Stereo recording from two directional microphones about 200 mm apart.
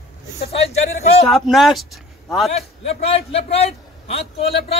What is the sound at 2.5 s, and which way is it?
A man's voice, 30° left (ahead or behind).